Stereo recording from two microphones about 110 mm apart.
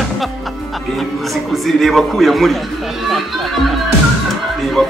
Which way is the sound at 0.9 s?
Centre (ahead or behind).